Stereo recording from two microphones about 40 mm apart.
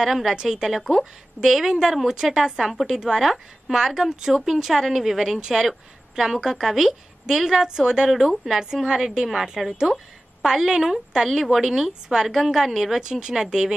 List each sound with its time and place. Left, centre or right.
0.0 s a woman's voice: centre
8.5 s speech: centre
8.8 s a woman's voice: centre